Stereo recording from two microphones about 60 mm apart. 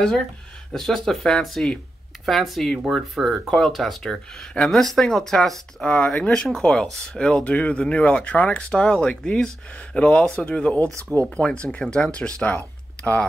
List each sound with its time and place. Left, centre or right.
0.7 s speech: centre; by 13.3 s left